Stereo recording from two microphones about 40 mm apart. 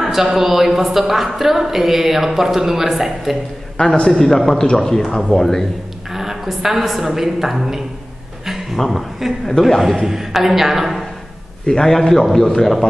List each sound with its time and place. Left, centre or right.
0.0 s a woman's voice: centre
3.8 s a man's voice: left
4.1 s a man's voice: centre
6.1 s a woman's voice: centre
8.7 s a man's voice: centre
11.6 s a man's voice: centre